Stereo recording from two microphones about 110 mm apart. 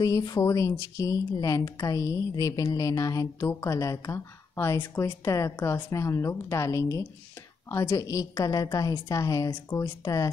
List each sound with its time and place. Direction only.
0.0 s a woman's voice: 35° left (ahead or behind)